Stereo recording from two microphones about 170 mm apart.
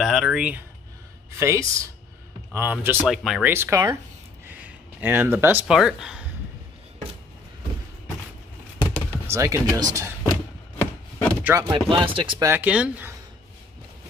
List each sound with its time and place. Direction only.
0.0 s speech: centre (ahead or behind)
1.4 s speech: 20° right (ahead or behind); by 3.5 s centre (ahead or behind)
3.5 s speech: 15° right (ahead or behind)
9.1 s speech: 15° right (ahead or behind)
10.8 s wood: 10° left (ahead or behind)
11.4 s speech: 15° right (ahead or behind)
11.7 s speech: 30° right (ahead or behind)
12.4 s speech: 10° right (ahead or behind)